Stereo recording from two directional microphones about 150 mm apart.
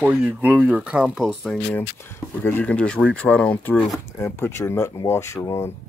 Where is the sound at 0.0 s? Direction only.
10° right (ahead or behind).